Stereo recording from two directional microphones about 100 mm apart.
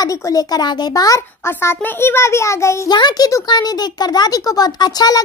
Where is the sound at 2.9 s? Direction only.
40° left (ahead or behind).